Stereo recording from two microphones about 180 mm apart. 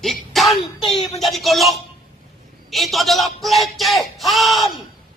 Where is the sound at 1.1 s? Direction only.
Centre (ahead or behind).